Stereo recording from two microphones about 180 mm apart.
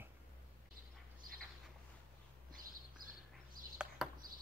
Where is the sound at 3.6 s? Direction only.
50° right (ahead or behind).